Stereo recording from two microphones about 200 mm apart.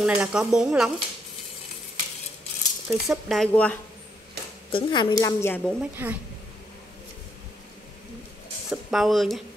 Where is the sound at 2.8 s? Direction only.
Centre (ahead or behind).